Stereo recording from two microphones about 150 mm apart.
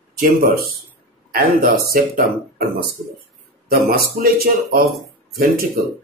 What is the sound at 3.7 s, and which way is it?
Speech, 80° right.